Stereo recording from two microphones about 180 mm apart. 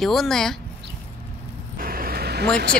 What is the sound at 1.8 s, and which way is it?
Vehicle, 55° right (ahead or behind).